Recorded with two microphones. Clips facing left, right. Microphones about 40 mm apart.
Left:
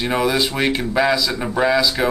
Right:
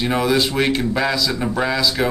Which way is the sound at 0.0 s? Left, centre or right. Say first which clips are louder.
Right 1 dB; centre.